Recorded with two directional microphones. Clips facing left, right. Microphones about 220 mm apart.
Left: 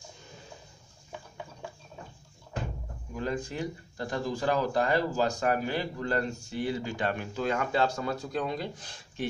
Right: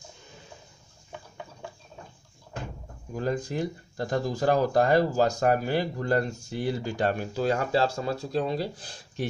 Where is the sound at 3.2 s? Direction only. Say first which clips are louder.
Right 4 dB; 40° right (ahead or behind).